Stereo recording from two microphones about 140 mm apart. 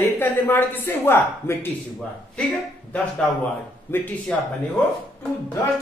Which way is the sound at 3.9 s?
15° left (ahead or behind).